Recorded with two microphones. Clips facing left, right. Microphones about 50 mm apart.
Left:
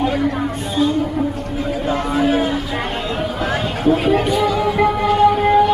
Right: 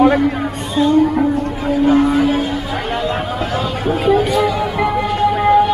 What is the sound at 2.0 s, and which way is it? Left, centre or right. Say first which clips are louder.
Vehicle: right 6 dB; centre.